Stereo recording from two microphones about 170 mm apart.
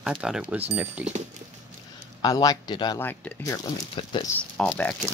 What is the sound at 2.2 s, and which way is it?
Speech, 20° left (ahead or behind).